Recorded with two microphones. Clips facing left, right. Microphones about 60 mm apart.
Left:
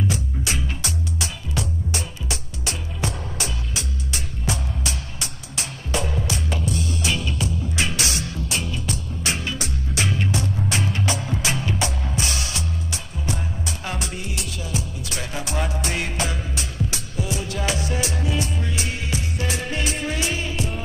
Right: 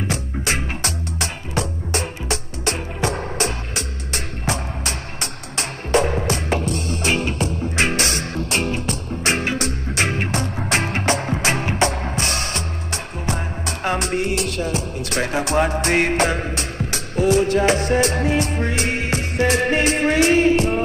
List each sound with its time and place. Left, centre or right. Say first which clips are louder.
0.1 s music: right 3 dB; right